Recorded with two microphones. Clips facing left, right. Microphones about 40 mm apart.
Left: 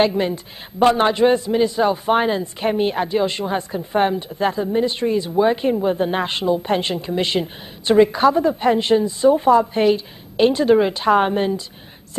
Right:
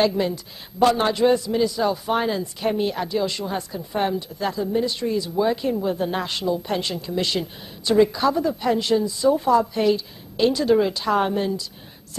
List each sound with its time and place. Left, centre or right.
0.0 s a man's voice: left